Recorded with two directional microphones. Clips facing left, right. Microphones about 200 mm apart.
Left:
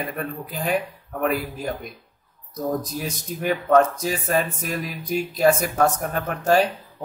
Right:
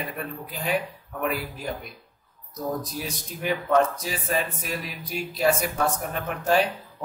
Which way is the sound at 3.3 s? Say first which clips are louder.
Left 4 dB; 50° left (ahead or behind).